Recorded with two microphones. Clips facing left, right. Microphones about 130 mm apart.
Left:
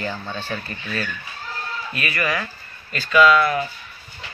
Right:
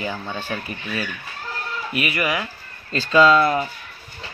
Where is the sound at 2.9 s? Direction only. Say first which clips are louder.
Right 1 dB; 30° right (ahead or behind).